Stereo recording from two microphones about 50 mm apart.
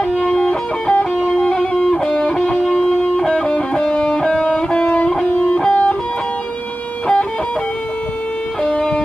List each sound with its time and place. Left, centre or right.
0.9 s music: centre
4.8 s music: left
8.6 s music: centre